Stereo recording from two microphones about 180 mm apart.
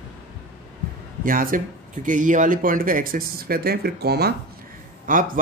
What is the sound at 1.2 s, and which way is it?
Speech, 50° right (ahead or behind).